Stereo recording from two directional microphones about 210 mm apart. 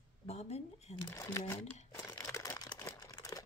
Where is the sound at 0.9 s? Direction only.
15° left (ahead or behind).